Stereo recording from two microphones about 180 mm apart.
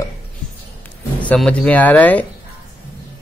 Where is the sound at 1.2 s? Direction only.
5° left (ahead or behind).